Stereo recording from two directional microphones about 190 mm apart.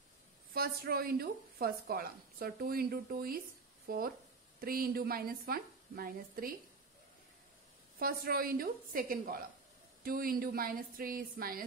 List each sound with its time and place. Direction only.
0.5 s a woman's voice: 50° right (ahead or behind)
8.0 s a woman's voice: 50° right (ahead or behind)